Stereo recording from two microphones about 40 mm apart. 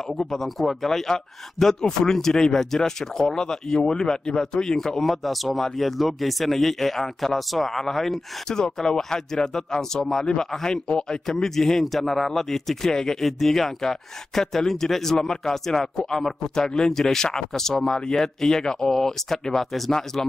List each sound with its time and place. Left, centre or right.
0.2 s a man's voice: centre
5.0 s a man's voice: centre